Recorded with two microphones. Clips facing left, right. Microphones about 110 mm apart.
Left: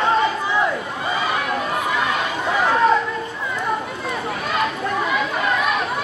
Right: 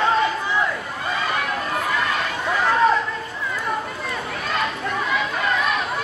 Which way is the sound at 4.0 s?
5° left (ahead or behind).